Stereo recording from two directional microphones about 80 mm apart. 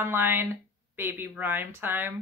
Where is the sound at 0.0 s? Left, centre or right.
Right.